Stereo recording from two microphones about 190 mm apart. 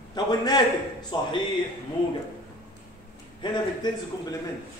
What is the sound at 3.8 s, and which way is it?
Speech, 20° left (ahead or behind).